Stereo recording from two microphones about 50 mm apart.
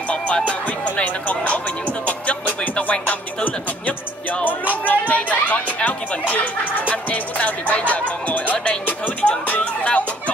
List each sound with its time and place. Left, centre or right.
0.5 s music: left
9.2 s music: left